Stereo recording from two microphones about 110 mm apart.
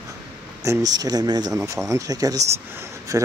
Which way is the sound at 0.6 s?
30° right (ahead or behind).